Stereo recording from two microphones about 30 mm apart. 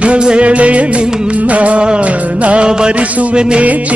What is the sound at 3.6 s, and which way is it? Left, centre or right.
Music, right.